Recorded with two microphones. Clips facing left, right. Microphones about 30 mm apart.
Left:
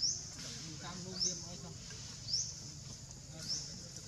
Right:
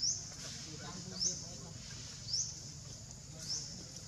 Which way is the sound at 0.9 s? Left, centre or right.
Centre.